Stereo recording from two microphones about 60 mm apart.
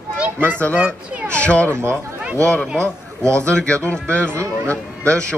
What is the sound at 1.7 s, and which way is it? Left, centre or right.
Speech, right.